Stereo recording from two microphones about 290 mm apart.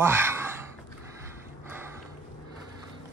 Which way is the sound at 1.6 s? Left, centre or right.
Centre.